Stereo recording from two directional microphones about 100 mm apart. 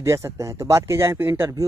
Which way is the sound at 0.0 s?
30° right (ahead or behind).